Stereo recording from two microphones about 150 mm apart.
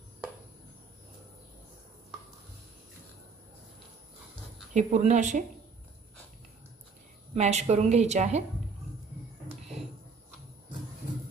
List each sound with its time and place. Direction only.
4.7 s a woman's voice: 55° right (ahead or behind)
7.3 s a woman's voice: 45° right (ahead or behind)